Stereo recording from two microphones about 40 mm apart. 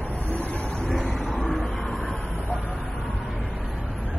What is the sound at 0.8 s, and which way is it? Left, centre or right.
Vehicle, centre.